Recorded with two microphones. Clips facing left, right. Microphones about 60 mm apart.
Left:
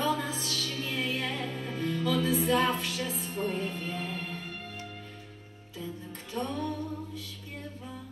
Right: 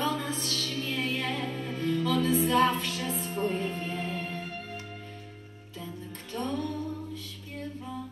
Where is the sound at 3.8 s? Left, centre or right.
Centre.